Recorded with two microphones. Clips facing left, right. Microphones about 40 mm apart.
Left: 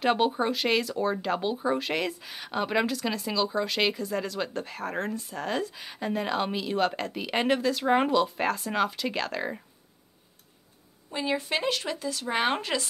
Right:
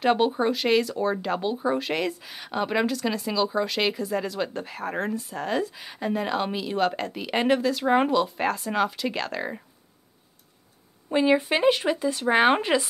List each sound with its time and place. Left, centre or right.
0.0 s speech: centre
11.1 s speech: right